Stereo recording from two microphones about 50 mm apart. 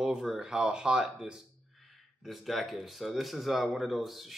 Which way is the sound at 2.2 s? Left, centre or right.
Centre.